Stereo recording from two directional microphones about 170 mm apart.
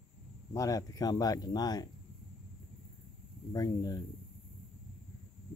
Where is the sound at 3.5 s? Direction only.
20° left (ahead or behind).